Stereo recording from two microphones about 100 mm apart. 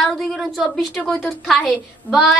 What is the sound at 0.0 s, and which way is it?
A woman's voice, 5° left (ahead or behind).